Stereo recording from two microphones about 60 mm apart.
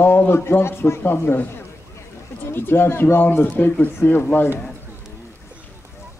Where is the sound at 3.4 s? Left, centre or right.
Left.